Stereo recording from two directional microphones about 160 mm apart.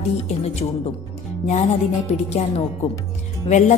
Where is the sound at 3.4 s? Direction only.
45° left (ahead or behind).